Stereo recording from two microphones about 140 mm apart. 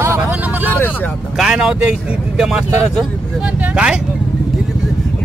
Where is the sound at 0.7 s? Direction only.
15° left (ahead or behind).